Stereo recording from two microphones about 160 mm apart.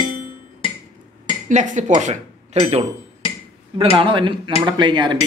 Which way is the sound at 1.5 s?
50° right (ahead or behind).